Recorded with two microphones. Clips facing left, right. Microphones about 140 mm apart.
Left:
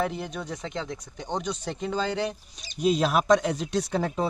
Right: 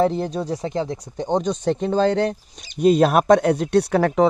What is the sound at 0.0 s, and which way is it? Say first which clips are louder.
Speech: right 9 dB; 35° right (ahead or behind).